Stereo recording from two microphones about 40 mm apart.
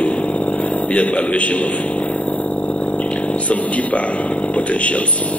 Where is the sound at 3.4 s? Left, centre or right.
Left.